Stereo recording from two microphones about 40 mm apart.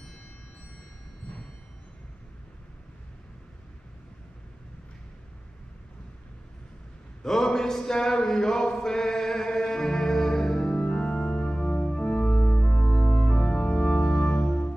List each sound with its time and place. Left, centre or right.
7.2 s a sound: centre
10.7 s organ: left
12.8 s music: left
13.2 s music: centre